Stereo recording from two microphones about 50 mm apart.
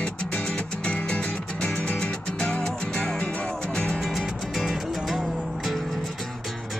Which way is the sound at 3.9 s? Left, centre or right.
Centre.